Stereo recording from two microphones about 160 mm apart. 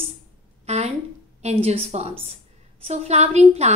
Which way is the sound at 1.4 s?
40° right (ahead or behind).